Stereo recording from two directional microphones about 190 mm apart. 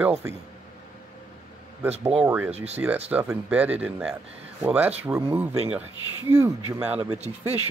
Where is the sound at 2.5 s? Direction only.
35° right (ahead or behind).